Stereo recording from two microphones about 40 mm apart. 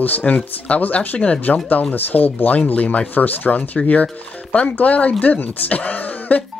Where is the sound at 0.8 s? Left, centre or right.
Left.